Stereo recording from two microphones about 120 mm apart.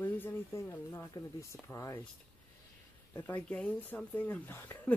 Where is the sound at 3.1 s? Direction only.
15° left (ahead or behind).